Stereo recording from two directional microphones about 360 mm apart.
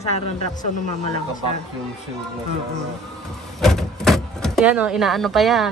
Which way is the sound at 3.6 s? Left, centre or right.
Centre.